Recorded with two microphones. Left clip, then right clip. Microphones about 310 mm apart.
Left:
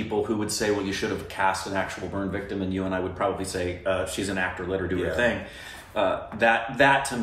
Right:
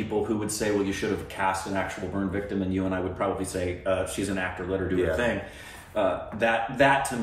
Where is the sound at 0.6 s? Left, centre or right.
Centre.